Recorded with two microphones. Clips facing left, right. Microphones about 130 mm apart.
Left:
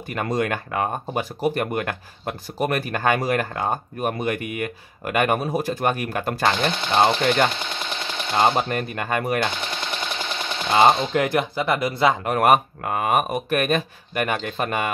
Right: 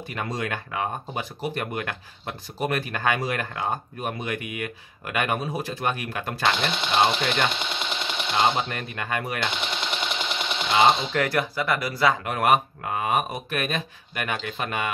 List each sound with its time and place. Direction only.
0.1 s speech: 50° left (ahead or behind)
7.5 s sewing machine: 20° right (ahead or behind)
8.4 s speech: 45° left (ahead or behind)
9.5 s a sound: 20° right (ahead or behind)
10.8 s speech: 50° left (ahead or behind)
11.1 s speech: 20° left (ahead or behind)
12.3 s speech: 45° left (ahead or behind)